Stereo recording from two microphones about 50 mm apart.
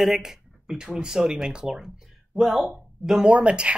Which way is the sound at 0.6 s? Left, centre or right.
Centre.